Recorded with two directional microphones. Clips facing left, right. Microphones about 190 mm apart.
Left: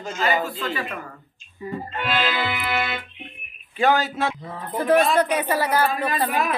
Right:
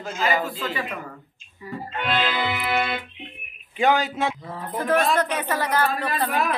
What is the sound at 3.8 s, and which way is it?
Speech, 15° right (ahead or behind).